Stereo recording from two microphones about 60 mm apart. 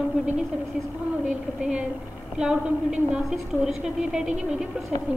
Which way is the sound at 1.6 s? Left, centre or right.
Centre.